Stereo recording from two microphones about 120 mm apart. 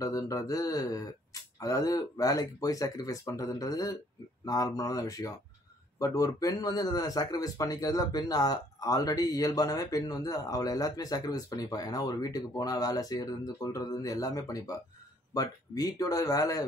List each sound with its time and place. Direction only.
0.0 s speech: 30° left (ahead or behind)